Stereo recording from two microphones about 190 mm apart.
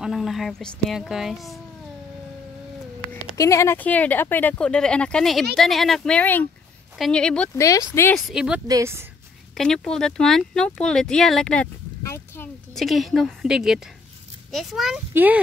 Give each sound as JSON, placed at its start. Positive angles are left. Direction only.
{"t": 0.0, "sound": "speech", "side_deg": 0}
{"t": 3.3, "sound": "speech", "side_deg": 15}
{"t": 8.3, "sound": "speech", "side_deg": -5}
{"t": 8.6, "sound": "speech", "side_deg": -15}
{"t": 9.6, "sound": "speech", "side_deg": 5}